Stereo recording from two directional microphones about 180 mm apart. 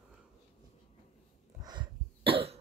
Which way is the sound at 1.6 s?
25° right (ahead or behind).